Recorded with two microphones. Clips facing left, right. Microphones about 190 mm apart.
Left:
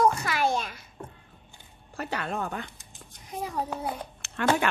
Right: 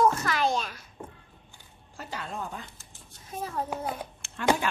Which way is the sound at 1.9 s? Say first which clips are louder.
Left 5 dB; 70° left (ahead or behind).